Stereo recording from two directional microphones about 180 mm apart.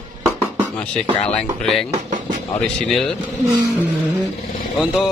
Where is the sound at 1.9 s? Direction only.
45° right (ahead or behind).